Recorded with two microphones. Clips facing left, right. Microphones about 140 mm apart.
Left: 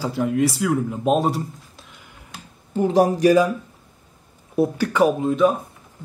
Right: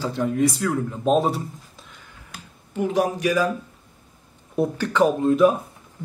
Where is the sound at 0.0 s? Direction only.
5° left (ahead or behind).